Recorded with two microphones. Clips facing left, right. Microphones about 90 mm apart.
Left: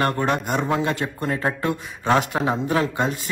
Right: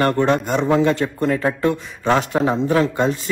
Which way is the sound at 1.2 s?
30° left (ahead or behind).